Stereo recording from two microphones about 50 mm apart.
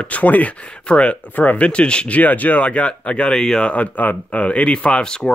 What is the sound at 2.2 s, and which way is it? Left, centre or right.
Speech, left.